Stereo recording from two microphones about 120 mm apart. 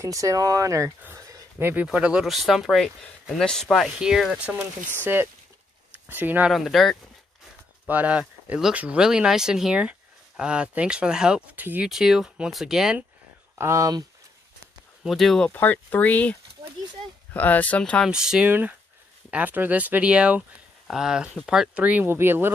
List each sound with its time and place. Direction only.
0.0 s speech: 25° right (ahead or behind)
6.5 s speech: centre (ahead or behind)
7.9 s speech: 10° right (ahead or behind)
11.9 s speech: 5° right (ahead or behind)
13.6 s speech: 25° right (ahead or behind)
15.0 s speech: centre (ahead or behind)
15.5 s speech: 15° left (ahead or behind)
18.1 s speech: 5° right (ahead or behind)